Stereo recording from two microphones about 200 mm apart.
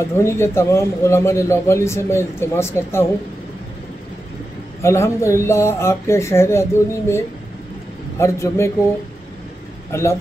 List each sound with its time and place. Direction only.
0.0 s speech: 15° left (ahead or behind)
4.8 s speech: 15° left (ahead or behind)
9.9 s speech: 15° left (ahead or behind)